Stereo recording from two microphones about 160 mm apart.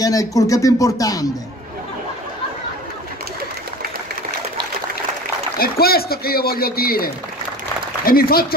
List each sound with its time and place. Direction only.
0.0 s speech: 20° left (ahead or behind)
5.6 s a man's voice: 70° left (ahead or behind)